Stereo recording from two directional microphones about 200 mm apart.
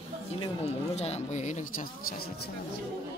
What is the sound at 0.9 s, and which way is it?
Speech, 30° left (ahead or behind).